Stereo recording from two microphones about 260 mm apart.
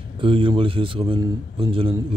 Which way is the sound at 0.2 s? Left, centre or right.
Centre.